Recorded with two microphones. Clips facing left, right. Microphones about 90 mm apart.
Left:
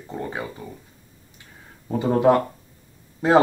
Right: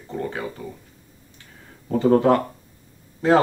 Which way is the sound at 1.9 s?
10° left (ahead or behind).